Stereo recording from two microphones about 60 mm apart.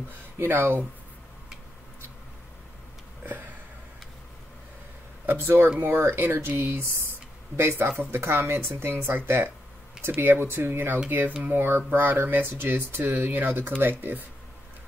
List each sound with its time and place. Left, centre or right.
0.4 s speech: right
3.3 s a sound: right
5.2 s speech: right